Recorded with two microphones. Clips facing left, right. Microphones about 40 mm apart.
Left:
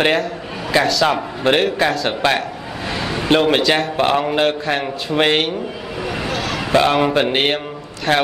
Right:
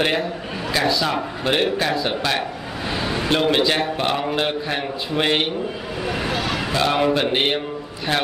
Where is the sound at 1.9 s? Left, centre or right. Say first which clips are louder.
Left 2 dB; left.